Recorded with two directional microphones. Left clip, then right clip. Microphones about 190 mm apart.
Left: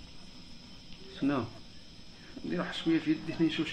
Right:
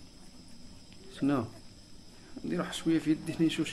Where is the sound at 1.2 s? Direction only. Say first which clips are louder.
Right 1 dB; 35° right (ahead or behind).